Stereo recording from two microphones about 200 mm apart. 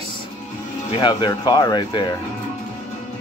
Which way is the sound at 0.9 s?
20° left (ahead or behind).